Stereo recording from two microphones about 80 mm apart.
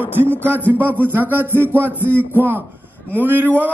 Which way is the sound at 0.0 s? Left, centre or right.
Left.